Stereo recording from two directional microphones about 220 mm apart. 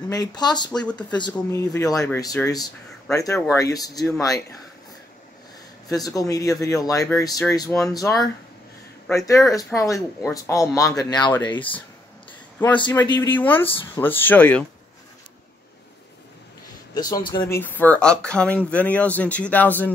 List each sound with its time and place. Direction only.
0.1 s speech: 20° left (ahead or behind)
5.9 s speech: 15° left (ahead or behind)
12.7 s speech: 20° left (ahead or behind)
16.9 s speech: 20° left (ahead or behind)